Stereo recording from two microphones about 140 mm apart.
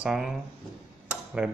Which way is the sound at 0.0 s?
5° right (ahead or behind).